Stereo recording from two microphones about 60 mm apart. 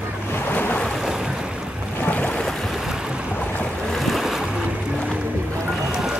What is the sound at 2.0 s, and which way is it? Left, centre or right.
Boat, left.